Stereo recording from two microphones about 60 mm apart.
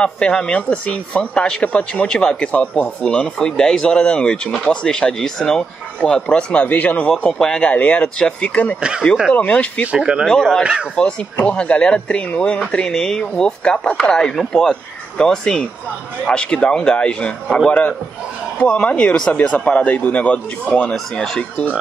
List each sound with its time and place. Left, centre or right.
0.0 s speech: centre
7.7 s speech: left
9.9 s speech: centre
10.2 s speech: centre
20.9 s speech: centre
21.4 s speech: left